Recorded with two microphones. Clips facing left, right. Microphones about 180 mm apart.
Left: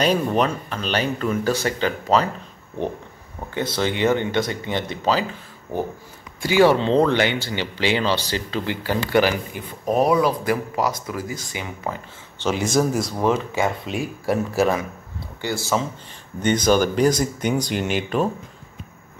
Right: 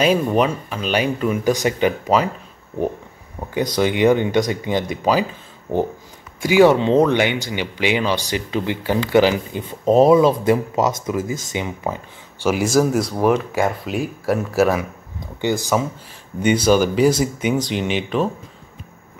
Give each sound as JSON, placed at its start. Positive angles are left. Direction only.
{"t": 0.0, "sound": "speech", "side_deg": -5}
{"t": 3.5, "sound": "speech", "side_deg": -15}
{"t": 6.4, "sound": "speech", "side_deg": -20}
{"t": 15.1, "sound": "speech", "side_deg": -15}